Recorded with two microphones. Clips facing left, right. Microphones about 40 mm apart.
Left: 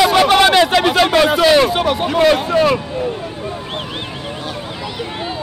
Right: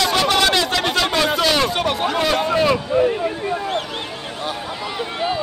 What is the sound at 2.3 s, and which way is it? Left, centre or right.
Speech, centre.